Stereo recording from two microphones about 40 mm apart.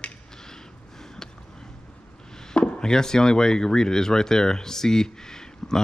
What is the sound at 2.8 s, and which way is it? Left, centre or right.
Speech, centre.